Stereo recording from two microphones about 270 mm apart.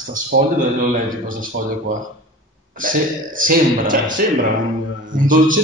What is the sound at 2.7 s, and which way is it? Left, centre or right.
A man's voice, right.